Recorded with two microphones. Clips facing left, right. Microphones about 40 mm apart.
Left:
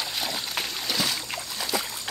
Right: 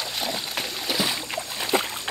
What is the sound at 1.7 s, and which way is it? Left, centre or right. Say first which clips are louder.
Boat: right 7 dB; right.